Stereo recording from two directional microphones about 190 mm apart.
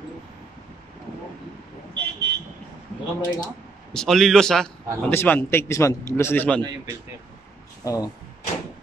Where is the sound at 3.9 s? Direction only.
Centre (ahead or behind).